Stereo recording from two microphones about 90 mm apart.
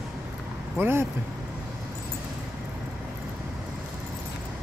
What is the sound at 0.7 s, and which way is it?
Speech, 25° right (ahead or behind).